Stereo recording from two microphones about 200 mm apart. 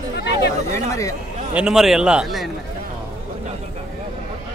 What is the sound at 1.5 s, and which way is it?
Speech, 5° right (ahead or behind).